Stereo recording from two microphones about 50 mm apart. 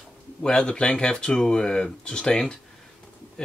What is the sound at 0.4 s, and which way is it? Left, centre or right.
Speech, centre.